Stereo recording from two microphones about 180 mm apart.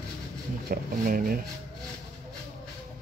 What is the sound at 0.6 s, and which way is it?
Speech, 50° right (ahead or behind).